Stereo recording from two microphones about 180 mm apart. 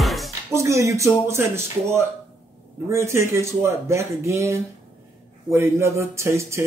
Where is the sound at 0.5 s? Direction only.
15° right (ahead or behind).